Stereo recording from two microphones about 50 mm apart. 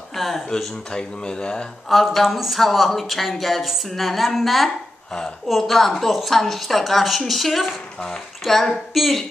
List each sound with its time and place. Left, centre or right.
0.1 s a sound: centre
0.5 s speech: centre
1.9 s speech: centre